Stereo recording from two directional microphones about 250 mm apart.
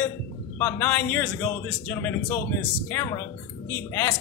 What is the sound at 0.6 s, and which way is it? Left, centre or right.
A man's voice, centre.